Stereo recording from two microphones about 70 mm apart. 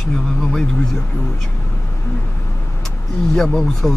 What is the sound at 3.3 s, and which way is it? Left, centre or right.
Speech, centre.